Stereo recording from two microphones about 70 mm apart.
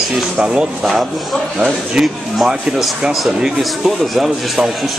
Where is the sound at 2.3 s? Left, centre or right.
Centre.